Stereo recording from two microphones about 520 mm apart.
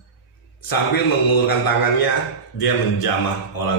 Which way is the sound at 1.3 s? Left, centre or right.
Left.